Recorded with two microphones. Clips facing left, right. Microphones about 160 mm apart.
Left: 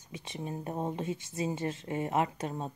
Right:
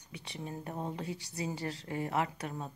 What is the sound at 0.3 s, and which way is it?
Speech, 20° left (ahead or behind).